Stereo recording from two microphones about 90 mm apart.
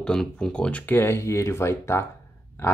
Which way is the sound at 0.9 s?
30° left (ahead or behind).